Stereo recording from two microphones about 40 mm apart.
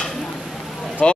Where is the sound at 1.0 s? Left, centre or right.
Left.